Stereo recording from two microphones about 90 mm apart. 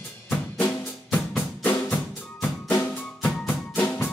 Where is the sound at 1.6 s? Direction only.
20° left (ahead or behind).